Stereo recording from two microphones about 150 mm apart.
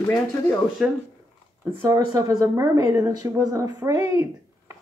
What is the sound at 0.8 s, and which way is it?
Speech, centre (ahead or behind).